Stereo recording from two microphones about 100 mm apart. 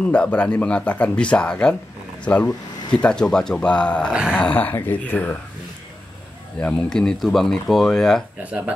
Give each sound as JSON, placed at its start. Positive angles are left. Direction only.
{"t": 0.1, "sound": "speech", "side_deg": 10}
{"t": 4.1, "sound": "speech", "side_deg": -5}
{"t": 4.4, "sound": "speech", "side_deg": 15}
{"t": 6.6, "sound": "speech", "side_deg": 5}
{"t": 8.5, "sound": "speech", "side_deg": -15}